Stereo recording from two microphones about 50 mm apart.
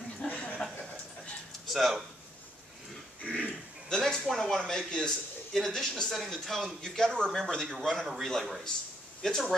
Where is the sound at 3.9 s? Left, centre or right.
Centre.